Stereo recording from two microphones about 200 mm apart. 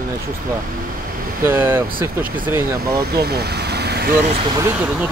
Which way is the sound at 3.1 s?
50° right (ahead or behind).